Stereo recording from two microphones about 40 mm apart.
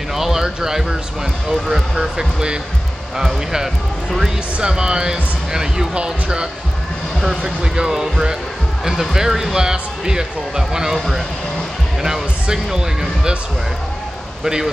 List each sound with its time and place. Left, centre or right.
0.1 s a sound: centre
1.5 s speech: centre
4.6 s speech: centre
7.2 s speech: centre
7.6 s speech: right
14.4 s speech: centre